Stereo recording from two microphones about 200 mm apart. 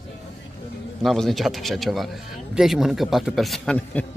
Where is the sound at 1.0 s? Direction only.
Centre (ahead or behind).